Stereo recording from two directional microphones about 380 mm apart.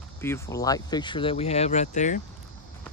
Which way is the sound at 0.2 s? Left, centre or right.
Centre.